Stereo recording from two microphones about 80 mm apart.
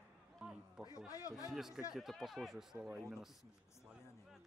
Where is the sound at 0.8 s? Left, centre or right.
Left.